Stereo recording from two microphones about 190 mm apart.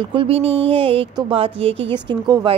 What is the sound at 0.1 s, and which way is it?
Speech, 30° right (ahead or behind).